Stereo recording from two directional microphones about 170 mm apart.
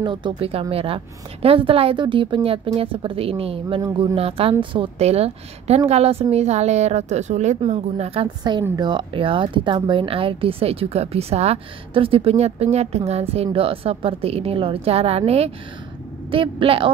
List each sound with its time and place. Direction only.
0.0 s speech: 25° right (ahead or behind)